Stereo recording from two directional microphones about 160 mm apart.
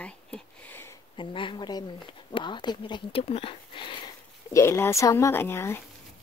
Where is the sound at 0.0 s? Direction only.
10° left (ahead or behind).